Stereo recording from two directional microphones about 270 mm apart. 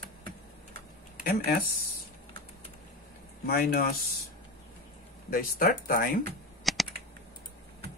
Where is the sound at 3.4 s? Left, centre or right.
Left.